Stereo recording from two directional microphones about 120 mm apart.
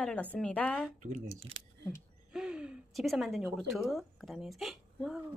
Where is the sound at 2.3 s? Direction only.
5° right (ahead or behind).